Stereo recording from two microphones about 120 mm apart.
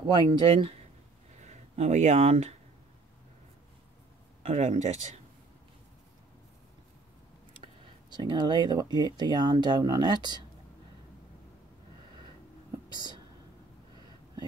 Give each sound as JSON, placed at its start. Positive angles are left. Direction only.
{"t": 0.0, "sound": "speech", "side_deg": -35}
{"t": 1.4, "sound": "speech", "side_deg": -70}
{"t": 4.5, "sound": "speech", "side_deg": -80}
{"t": 8.1, "sound": "speech", "side_deg": -35}
{"t": 12.9, "sound": "speech", "side_deg": -35}